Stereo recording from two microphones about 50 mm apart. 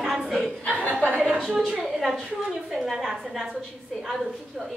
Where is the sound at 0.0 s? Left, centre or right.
Centre.